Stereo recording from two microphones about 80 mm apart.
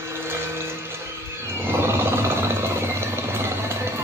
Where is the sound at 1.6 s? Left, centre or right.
Right.